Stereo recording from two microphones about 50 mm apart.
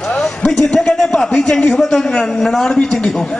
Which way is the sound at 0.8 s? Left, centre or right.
Centre.